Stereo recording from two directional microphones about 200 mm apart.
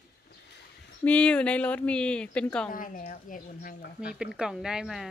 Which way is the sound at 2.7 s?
40° left (ahead or behind).